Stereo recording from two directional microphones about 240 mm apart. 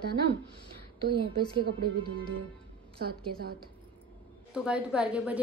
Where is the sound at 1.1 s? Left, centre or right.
Right.